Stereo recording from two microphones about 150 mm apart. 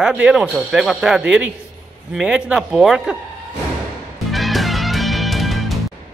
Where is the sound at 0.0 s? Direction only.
5° right (ahead or behind).